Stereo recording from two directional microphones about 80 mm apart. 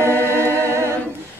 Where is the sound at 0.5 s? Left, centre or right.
Right.